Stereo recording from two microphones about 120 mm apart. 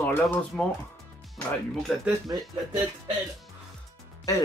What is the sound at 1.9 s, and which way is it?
Speech, centre (ahead or behind).